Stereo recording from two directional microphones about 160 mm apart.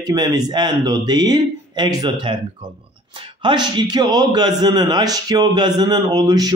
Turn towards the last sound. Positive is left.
turn(degrees=-25)  # may be behind; listen again after turning